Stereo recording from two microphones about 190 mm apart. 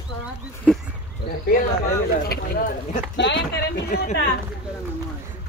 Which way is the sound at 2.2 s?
50° left (ahead or behind).